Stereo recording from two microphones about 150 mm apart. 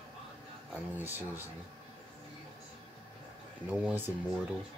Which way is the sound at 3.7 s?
10° right (ahead or behind).